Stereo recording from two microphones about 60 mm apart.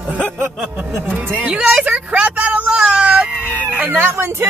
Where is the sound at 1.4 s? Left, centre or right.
Centre.